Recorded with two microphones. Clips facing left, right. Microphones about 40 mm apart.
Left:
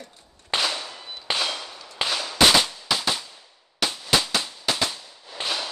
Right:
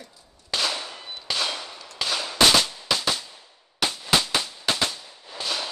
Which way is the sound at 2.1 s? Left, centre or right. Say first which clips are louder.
Right 2 dB; centre.